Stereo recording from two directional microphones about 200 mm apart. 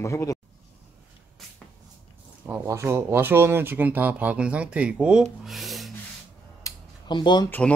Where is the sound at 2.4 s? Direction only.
10° right (ahead or behind).